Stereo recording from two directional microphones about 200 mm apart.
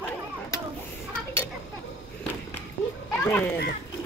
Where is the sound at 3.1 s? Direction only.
10° left (ahead or behind).